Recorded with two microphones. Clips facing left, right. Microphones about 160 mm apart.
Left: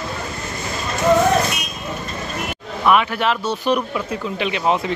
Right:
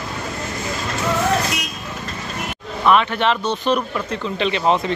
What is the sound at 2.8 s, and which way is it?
Speech, 10° left (ahead or behind).